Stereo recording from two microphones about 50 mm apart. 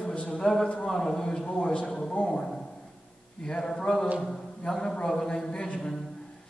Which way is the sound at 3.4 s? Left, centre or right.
Centre.